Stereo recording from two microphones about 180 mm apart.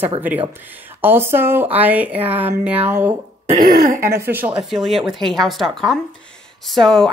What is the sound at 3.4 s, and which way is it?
Cough, 50° right (ahead or behind).